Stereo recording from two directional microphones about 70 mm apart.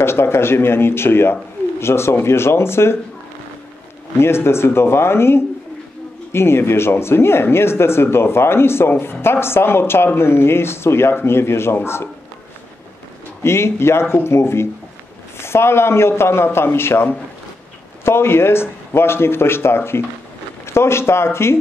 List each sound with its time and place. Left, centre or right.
0.0 s speech: left
4.2 s speech: left
13.4 s speech: left